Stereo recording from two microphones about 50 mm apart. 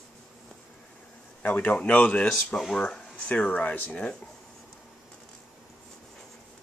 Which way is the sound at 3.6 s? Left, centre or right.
Left.